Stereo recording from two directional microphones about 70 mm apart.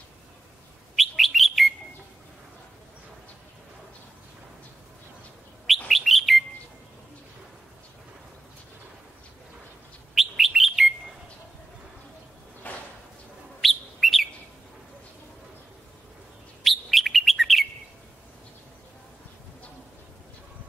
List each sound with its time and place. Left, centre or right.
0.9 s bird: centre
5.9 s bird: centre
10.1 s bird: centre
12.6 s a sound: left
13.6 s bird: centre
16.6 s bird: centre